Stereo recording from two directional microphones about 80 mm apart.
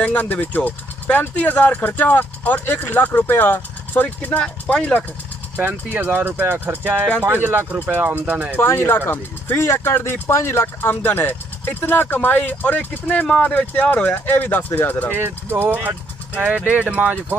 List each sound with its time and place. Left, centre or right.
0.0 s speech: left
5.6 s speech: right
8.5 s speech: left
15.1 s speech: right